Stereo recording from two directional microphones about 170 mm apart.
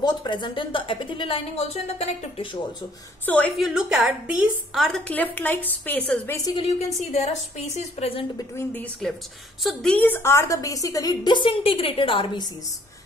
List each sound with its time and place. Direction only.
0.0 s a woman's voice: 25° left (ahead or behind)
3.3 s a woman's voice: 5° left (ahead or behind)
6.3 s a woman's voice: 20° left (ahead or behind)
6.8 s a woman's voice: 40° left (ahead or behind)
8.5 s a woman's voice: 10° left (ahead or behind); by 12.4 s 30° left (ahead or behind)